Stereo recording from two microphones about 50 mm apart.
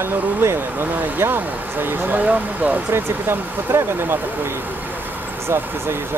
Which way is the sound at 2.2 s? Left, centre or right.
Right.